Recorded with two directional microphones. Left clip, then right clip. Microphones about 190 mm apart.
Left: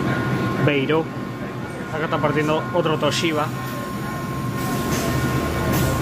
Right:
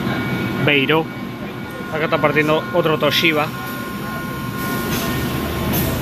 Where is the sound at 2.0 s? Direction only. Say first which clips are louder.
Right 5 dB; 10° right (ahead or behind).